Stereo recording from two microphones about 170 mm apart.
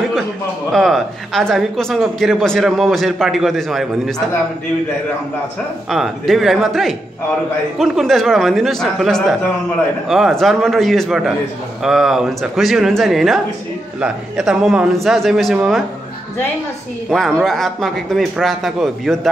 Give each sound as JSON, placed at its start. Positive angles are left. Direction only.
{"t": 0.7, "sound": "speech", "side_deg": 0}
{"t": 5.9, "sound": "speech", "side_deg": 0}
{"t": 17.1, "sound": "speech", "side_deg": 0}